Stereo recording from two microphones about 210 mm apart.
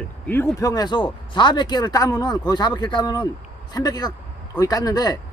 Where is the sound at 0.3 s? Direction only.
10° left (ahead or behind).